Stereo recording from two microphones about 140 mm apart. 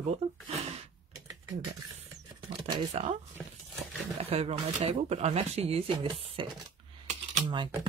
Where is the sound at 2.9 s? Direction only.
55° right (ahead or behind).